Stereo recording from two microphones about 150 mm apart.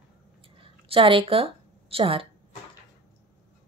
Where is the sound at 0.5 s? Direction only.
35° right (ahead or behind).